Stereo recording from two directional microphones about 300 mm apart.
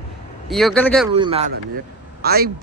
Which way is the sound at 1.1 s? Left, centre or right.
Centre.